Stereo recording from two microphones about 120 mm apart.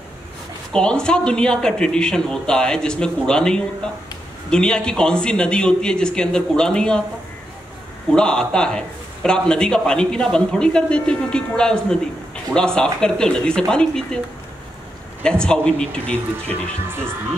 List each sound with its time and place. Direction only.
0.7 s a man's voice: 5° left (ahead or behind)
8.1 s a man's voice: 5° left (ahead or behind)
15.2 s a man's voice: 5° left (ahead or behind)
16.8 s speech: 20° right (ahead or behind)